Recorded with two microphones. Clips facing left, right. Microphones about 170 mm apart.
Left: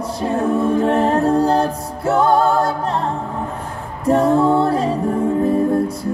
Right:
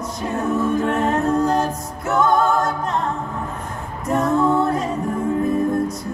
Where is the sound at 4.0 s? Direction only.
30° left (ahead or behind).